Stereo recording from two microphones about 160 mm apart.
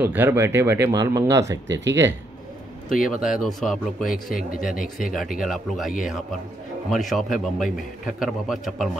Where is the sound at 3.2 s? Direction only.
Centre (ahead or behind).